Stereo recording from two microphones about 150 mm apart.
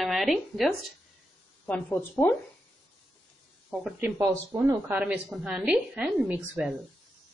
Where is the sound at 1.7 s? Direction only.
15° left (ahead or behind).